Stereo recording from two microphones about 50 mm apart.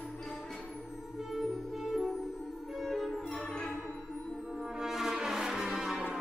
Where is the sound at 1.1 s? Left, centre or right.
Centre.